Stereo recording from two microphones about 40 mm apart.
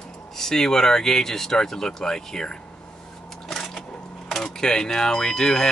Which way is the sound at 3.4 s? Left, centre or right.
Centre.